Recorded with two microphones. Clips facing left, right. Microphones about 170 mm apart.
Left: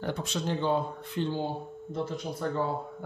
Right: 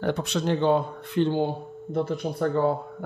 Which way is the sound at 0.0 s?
70° right (ahead or behind).